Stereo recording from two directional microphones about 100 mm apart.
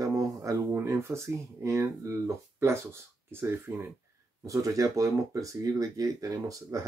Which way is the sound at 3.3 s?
25° right (ahead or behind).